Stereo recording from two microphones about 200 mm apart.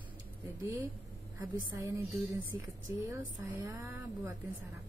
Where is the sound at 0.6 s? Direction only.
10° right (ahead or behind).